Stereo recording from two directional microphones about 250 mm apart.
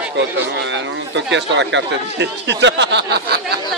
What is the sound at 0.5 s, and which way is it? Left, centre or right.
Speech, right.